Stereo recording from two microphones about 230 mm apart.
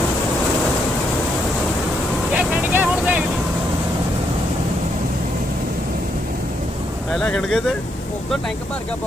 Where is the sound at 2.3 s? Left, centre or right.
Centre.